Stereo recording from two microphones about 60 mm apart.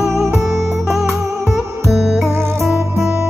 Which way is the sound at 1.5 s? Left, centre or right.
Centre.